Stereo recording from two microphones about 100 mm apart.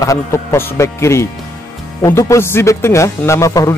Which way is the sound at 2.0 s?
40° left (ahead or behind).